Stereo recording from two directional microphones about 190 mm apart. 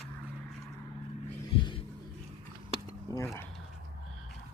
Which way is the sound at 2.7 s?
15° left (ahead or behind).